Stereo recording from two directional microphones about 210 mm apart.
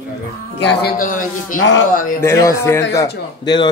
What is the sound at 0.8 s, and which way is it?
A man's voice, 40° left (ahead or behind).